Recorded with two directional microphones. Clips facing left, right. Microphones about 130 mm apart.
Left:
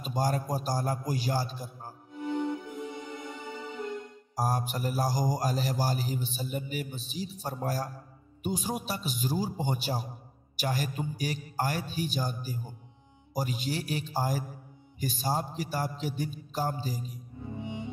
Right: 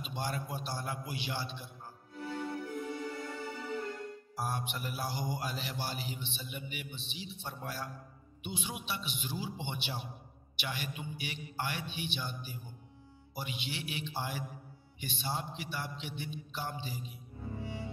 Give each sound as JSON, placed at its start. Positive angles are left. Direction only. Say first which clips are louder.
{"t": 0.0, "sound": "a man's voice", "louder": "left 8 dB", "side_deg": 40}
{"t": 2.1, "sound": "music", "louder": "left 7 dB", "side_deg": 20}
{"t": 4.4, "sound": "a man's voice", "louder": "left 7 dB", "side_deg": 40}
{"t": 17.6, "sound": "music", "louder": "left 5 dB", "side_deg": 20}